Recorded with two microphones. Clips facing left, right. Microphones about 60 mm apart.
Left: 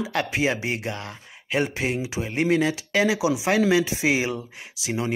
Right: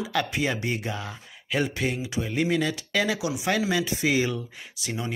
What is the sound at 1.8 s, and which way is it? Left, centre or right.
Speech, centre.